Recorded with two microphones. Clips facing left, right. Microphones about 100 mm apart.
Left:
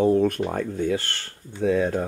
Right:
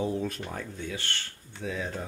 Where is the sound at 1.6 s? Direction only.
55° left (ahead or behind).